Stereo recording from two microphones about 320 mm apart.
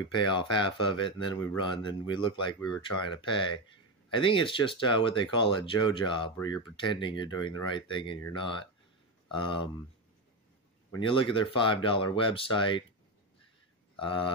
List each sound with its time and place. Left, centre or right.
0.1 s speech: centre
10.9 s speech: centre
13.9 s speech: centre